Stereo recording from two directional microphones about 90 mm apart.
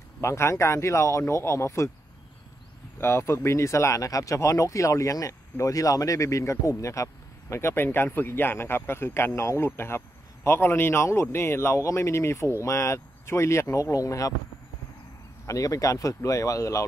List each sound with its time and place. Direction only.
0.2 s speech: 30° left (ahead or behind)
3.0 s speech: 30° left (ahead or behind)
15.4 s speech: 40° left (ahead or behind)